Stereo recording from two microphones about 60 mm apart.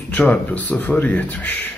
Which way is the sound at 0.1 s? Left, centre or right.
Left.